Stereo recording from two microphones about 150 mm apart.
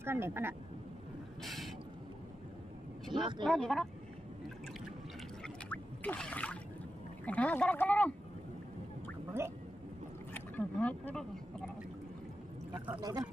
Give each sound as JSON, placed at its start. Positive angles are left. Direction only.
{"t": 0.0, "sound": "speech", "side_deg": -15}
{"t": 1.4, "sound": "a sound", "side_deg": 0}
{"t": 3.1, "sound": "speech", "side_deg": -30}
{"t": 3.4, "sound": "speech", "side_deg": 5}
{"t": 5.7, "sound": "a sound", "side_deg": 5}
{"t": 7.2, "sound": "speech", "side_deg": 10}
{"t": 10.5, "sound": "speech", "side_deg": 10}
{"t": 12.7, "sound": "speech", "side_deg": -10}
{"t": 13.0, "sound": "speech", "side_deg": -25}